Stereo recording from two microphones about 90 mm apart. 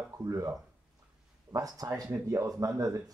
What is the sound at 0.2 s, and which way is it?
Speech, 40° right (ahead or behind).